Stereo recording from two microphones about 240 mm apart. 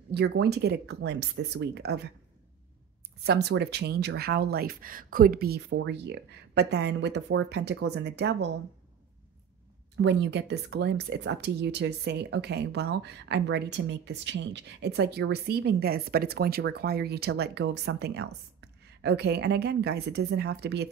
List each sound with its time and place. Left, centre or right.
0.1 s speech: right
3.3 s speech: right
9.9 s speech: right